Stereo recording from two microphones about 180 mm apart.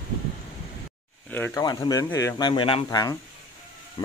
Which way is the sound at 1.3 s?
10° left (ahead or behind).